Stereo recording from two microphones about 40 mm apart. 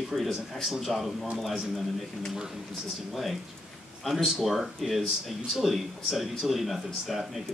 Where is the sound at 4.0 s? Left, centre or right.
Centre.